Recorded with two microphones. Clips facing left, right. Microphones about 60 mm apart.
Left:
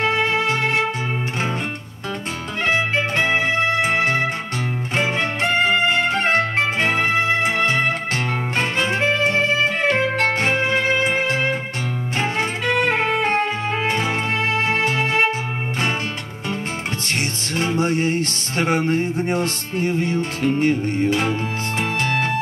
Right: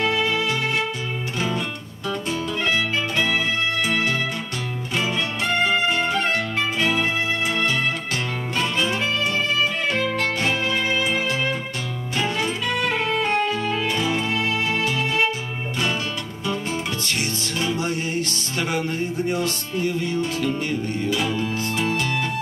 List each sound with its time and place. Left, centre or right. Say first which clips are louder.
0.0 s music: left 2 dB; left
2.6 s music: left 6 dB; left
17.6 s music: left 6 dB; left